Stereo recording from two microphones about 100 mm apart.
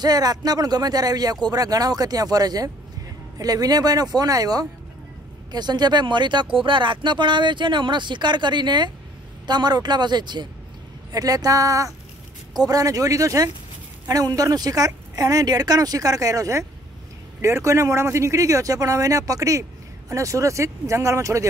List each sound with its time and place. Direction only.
0.0 s speech: 40° right (ahead or behind)